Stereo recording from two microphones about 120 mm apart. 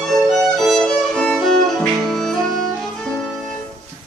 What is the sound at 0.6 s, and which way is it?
Violin, centre (ahead or behind).